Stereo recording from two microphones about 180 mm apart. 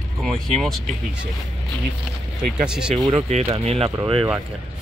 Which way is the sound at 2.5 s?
5° right (ahead or behind).